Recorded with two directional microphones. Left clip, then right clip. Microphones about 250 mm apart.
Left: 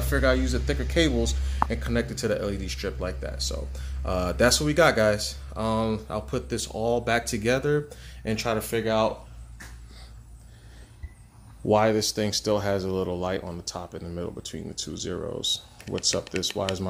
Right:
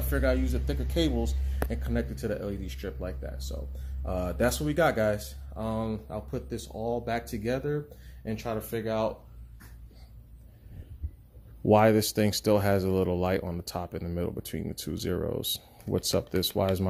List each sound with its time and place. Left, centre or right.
0.1 s speech: centre
11.6 s speech: right